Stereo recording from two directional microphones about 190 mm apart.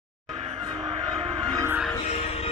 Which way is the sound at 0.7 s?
20° right (ahead or behind).